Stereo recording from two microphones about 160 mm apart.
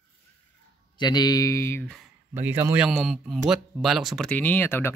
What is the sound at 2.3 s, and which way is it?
Speech, 15° right (ahead or behind).